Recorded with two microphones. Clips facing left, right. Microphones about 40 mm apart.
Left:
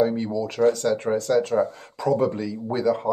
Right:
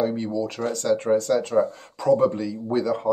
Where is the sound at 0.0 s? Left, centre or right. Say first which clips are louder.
Left 2 dB; centre.